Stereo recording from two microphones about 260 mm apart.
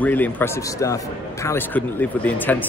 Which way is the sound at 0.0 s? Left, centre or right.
Centre.